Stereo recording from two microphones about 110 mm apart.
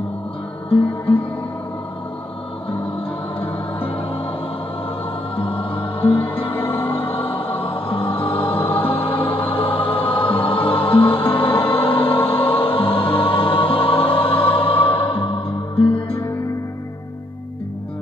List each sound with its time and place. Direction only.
3.3 s music: 55° left (ahead or behind)
5.3 s music: 55° left (ahead or behind)